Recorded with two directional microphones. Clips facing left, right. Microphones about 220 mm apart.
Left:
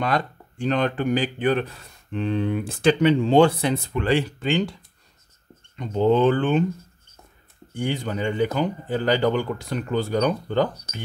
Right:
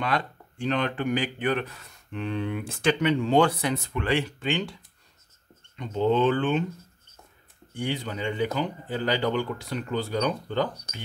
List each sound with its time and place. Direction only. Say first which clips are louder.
0.0 s speech: left 4 dB; 40° left (ahead or behind)
5.8 s speech: left 4 dB; 45° left (ahead or behind)
7.7 s speech: left 4 dB; 45° left (ahead or behind)